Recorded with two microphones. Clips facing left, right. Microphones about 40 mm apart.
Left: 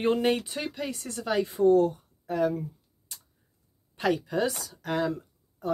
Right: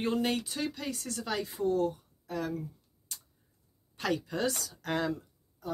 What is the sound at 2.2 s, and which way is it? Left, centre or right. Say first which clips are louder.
Speech: left 8 dB; left.